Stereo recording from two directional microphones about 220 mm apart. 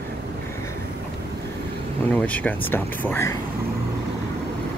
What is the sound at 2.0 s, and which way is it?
Speech, 5° left (ahead or behind).